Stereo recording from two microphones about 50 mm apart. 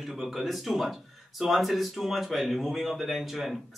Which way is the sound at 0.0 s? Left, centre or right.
Centre.